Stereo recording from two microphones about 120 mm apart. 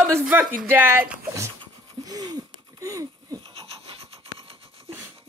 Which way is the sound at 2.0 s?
35° right (ahead or behind).